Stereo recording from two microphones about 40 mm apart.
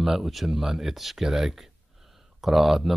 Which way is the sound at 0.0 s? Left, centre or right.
Centre.